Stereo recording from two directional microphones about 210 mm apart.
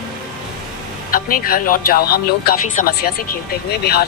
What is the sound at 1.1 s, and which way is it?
Speech, 45° left (ahead or behind).